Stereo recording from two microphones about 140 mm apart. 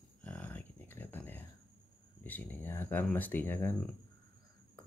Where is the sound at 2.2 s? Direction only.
15° left (ahead or behind).